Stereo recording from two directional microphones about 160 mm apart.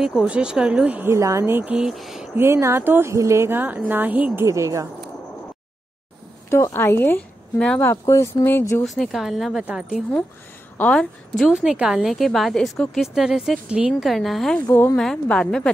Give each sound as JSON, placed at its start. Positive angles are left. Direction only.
{"t": 0.2, "sound": "a woman's voice", "side_deg": -5}
{"t": 2.3, "sound": "a woman's voice", "side_deg": -15}
{"t": 4.5, "sound": "speech", "side_deg": -20}
{"t": 6.5, "sound": "speech", "side_deg": 15}
{"t": 7.8, "sound": "speech", "side_deg": 20}
{"t": 8.8, "sound": "a woman's voice", "side_deg": 0}
{"t": 14.7, "sound": "speech", "side_deg": 15}
{"t": 15.0, "sound": "a woman's voice", "side_deg": 5}